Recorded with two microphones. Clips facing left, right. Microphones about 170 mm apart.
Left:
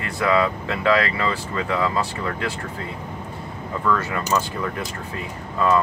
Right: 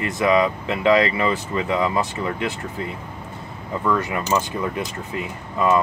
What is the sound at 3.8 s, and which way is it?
Speech, 15° right (ahead or behind).